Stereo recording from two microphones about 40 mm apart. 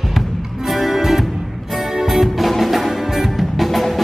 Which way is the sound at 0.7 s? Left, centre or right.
Centre.